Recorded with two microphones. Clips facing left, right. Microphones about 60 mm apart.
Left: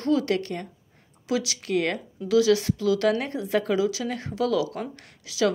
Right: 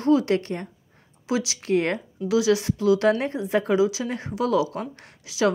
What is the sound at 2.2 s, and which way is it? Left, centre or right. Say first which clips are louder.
Speech: left 1 dB; right.